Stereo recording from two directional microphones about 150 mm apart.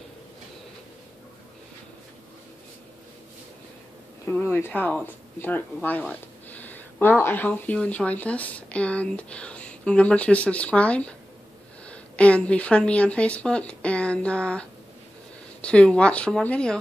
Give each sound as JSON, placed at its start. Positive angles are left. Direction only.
{"t": 4.3, "sound": "speech", "side_deg": 15}